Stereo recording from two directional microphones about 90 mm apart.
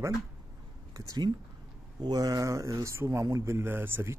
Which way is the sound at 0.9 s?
45° right (ahead or behind).